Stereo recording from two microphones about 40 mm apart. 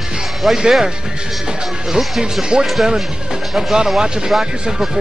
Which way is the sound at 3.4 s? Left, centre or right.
Centre.